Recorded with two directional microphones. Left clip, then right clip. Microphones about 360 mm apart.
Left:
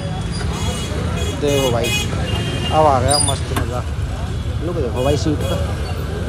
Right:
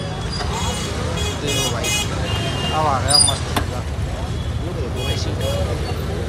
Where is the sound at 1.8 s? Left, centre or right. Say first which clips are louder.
Left 2 dB; right.